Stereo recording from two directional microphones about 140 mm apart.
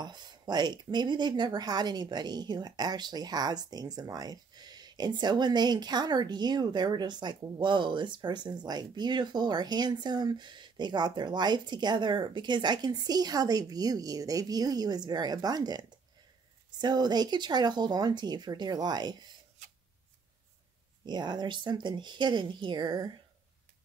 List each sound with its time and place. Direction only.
0.0 s speech: 30° right (ahead or behind)
16.8 s speech: 30° right (ahead or behind)
21.0 s speech: 30° right (ahead or behind)